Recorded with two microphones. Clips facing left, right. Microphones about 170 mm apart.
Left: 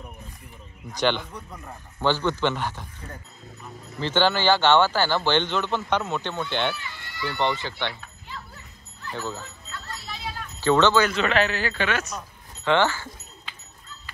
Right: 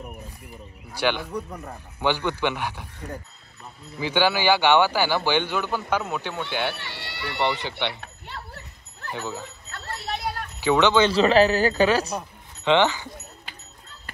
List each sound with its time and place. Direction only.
0.9 s speech: 10° right (ahead or behind)
4.0 s speech: 10° right (ahead or behind)
6.7 s speech: 70° right (ahead or behind)
9.1 s speech: 15° right (ahead or behind)
9.7 s a sound: 65° right (ahead or behind)
10.6 s speech: 15° right (ahead or behind)
11.1 s speech: 35° right (ahead or behind)
12.6 s speech: 15° right (ahead or behind)